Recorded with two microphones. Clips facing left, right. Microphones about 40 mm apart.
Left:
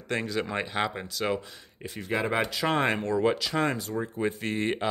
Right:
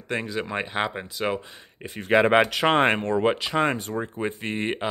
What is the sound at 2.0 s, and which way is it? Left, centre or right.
Speech, right.